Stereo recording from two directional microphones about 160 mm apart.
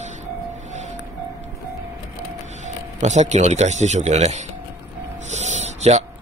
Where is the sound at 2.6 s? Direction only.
45° right (ahead or behind).